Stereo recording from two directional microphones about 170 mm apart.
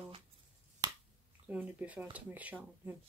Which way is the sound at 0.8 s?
20° right (ahead or behind).